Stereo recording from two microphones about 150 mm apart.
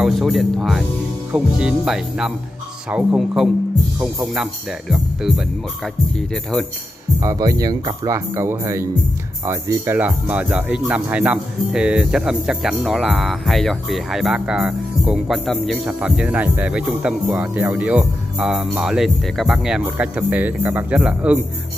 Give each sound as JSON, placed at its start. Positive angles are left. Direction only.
{"t": 0.0, "sound": "speech", "side_deg": 0}
{"t": 7.2, "sound": "speech", "side_deg": -25}